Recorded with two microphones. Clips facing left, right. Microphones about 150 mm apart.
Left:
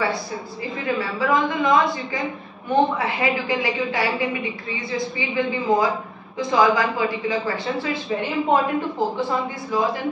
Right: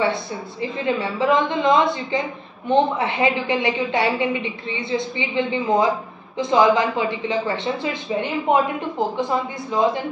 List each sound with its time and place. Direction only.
0.0 s a woman's voice: 25° right (ahead or behind)
9.7 s a woman's voice: 20° right (ahead or behind)